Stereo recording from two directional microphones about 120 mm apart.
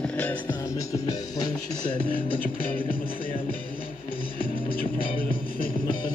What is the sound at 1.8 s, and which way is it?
Music, 40° left (ahead or behind).